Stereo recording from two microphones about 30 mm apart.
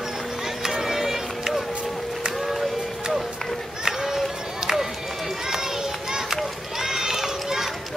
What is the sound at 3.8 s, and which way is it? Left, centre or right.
Run, centre.